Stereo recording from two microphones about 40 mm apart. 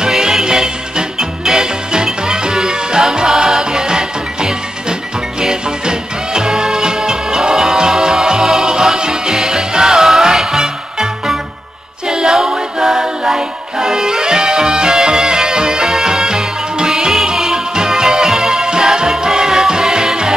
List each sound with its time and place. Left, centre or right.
0.0 s music: centre
12.1 s a capella: centre
19.7 s music: centre